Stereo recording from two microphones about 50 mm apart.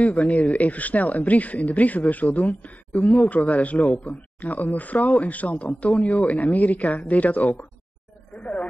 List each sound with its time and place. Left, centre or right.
0.0 s speech: left